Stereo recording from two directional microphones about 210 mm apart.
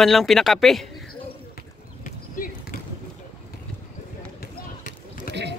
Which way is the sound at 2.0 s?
40° left (ahead or behind).